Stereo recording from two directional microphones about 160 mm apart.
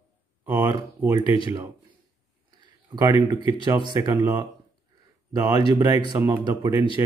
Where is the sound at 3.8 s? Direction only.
25° right (ahead or behind).